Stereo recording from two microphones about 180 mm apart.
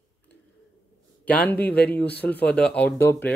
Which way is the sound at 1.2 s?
10° left (ahead or behind).